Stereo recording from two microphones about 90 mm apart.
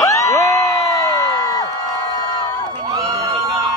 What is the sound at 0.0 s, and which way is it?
Crowd, 35° left (ahead or behind).